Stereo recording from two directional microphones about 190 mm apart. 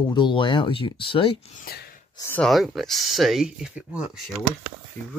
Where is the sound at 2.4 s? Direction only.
Centre (ahead or behind).